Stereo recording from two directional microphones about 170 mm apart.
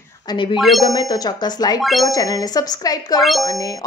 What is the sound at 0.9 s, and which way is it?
Speech, 25° left (ahead or behind).